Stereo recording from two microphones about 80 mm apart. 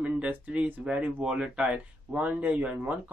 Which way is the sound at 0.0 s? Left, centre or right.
Centre.